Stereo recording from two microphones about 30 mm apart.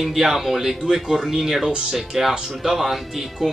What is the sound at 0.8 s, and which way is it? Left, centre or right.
Speech, centre.